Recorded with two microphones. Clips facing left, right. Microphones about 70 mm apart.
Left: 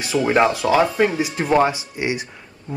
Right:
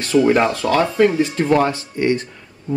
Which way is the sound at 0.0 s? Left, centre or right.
Centre.